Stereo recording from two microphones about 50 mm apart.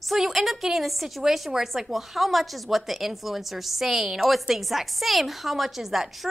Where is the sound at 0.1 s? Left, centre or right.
Centre.